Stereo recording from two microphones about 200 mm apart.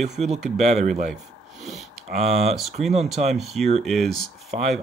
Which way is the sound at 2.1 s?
30° right (ahead or behind).